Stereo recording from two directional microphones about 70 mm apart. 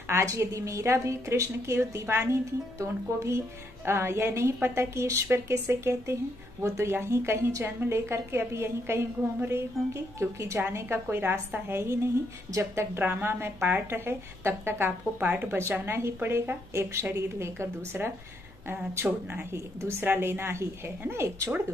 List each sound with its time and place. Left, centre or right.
0.1 s a woman's voice: right
20.0 s a woman's voice: right